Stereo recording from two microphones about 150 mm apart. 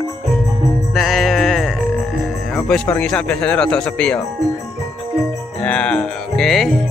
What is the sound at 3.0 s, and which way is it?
Speech, 5° left (ahead or behind).